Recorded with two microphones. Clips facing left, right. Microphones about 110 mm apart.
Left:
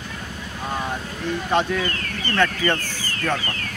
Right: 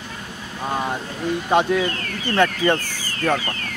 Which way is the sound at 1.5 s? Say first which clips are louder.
Right 4 dB; 15° right (ahead or behind).